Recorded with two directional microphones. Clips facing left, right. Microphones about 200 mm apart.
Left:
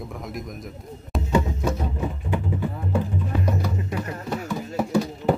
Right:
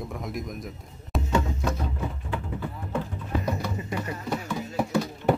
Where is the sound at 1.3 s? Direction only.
10° left (ahead or behind).